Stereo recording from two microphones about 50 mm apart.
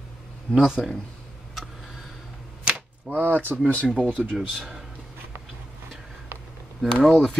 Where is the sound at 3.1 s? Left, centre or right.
Left.